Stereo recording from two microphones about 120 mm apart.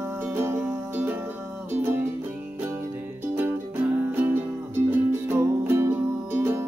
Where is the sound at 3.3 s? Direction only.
15° right (ahead or behind).